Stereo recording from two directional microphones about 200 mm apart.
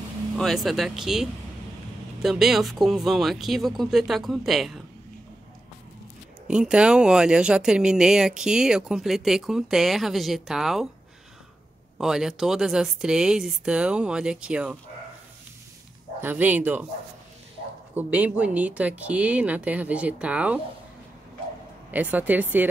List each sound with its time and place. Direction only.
0.4 s speech: centre (ahead or behind)
6.4 s speech: 5° right (ahead or behind)
12.0 s speech: centre (ahead or behind)
16.2 s speech: 10° right (ahead or behind)
17.9 s speech: 10° right (ahead or behind)
21.9 s speech: 10° right (ahead or behind)